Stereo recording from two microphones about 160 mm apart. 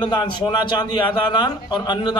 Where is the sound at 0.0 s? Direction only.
25° left (ahead or behind).